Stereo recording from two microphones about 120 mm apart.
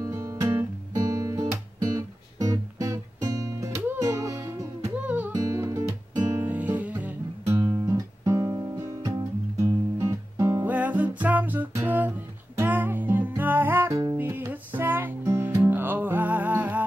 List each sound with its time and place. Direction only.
0.0 s guitar: 25° right (ahead or behind)
0.6 s music: 30° right (ahead or behind)
5.0 s music: 15° right (ahead or behind)
5.3 s music: 30° right (ahead or behind)
6.3 s music: 15° right (ahead or behind)
7.5 s guitar: 25° right (ahead or behind)
10.7 s music: 10° right (ahead or behind)